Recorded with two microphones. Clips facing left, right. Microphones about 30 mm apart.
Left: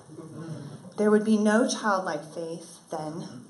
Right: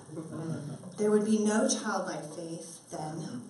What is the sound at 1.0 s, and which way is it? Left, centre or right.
Speech, left.